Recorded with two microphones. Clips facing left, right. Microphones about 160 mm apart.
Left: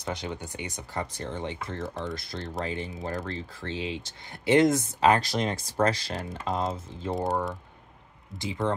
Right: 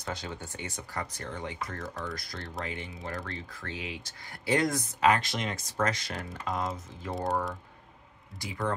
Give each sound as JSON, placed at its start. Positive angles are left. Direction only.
{"t": 0.0, "sound": "speech", "side_deg": 20}
{"t": 8.4, "sound": "speech", "side_deg": 25}